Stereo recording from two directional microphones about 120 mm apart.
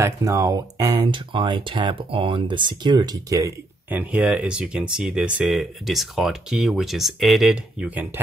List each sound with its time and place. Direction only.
0.0 s speech: 30° right (ahead or behind)
3.9 s speech: 10° right (ahead or behind)